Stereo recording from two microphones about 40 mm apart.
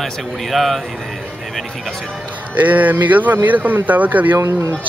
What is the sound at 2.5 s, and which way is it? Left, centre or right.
Speech, right.